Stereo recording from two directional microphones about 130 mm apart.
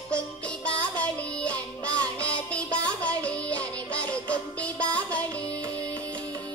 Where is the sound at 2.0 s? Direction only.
10° left (ahead or behind).